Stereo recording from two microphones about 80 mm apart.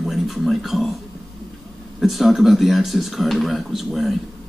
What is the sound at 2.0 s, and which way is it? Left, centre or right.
A man's voice, centre.